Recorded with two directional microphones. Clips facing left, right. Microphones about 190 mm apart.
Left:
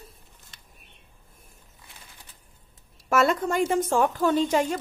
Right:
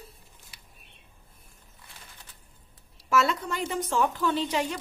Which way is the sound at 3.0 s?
50° left (ahead or behind).